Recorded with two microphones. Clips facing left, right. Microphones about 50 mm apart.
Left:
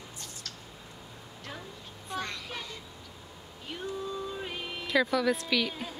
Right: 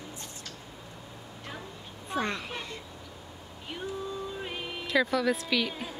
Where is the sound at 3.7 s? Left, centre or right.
Centre.